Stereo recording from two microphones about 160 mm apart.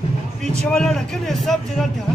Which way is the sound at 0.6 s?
5° left (ahead or behind).